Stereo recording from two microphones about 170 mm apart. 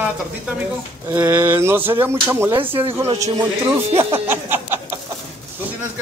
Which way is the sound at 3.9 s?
15° right (ahead or behind).